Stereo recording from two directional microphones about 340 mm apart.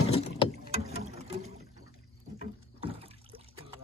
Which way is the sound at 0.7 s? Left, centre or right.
Centre.